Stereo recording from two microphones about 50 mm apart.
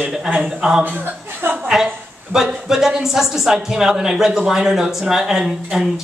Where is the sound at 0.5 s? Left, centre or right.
Centre.